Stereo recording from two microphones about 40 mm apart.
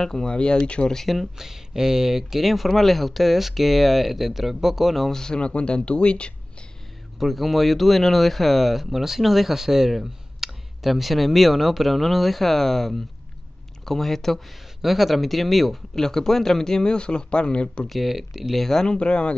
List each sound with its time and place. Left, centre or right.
0.0 s speech: centre
0.9 s speech: centre
1.4 s speech: centre
5.1 s speech: centre
7.2 s speech: centre
14.8 s speech: centre
15.9 s speech: centre
17.8 s speech: centre
18.6 s speech: centre
18.9 s speech: left